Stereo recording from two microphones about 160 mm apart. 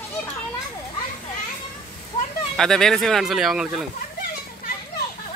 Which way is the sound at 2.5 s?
5° left (ahead or behind).